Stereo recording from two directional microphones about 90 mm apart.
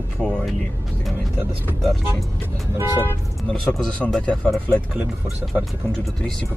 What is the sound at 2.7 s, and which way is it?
Speech, 25° right (ahead or behind).